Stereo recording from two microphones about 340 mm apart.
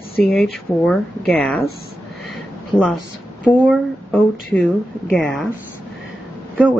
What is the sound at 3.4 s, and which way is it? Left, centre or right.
Speech, centre.